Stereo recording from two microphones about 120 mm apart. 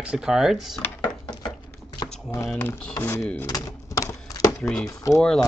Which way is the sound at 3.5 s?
30° left (ahead or behind).